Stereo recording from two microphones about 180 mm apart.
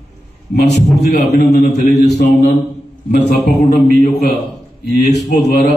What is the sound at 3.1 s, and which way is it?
Speech, 55° left (ahead or behind).